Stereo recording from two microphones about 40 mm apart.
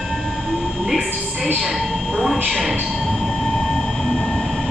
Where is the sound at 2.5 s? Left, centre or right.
Centre.